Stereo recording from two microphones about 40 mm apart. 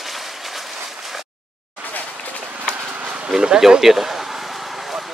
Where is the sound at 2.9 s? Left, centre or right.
Right.